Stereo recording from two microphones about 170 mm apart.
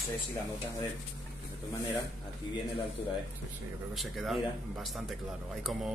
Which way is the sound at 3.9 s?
Centre (ahead or behind).